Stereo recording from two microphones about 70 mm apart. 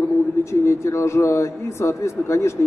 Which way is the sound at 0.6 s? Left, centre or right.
Left.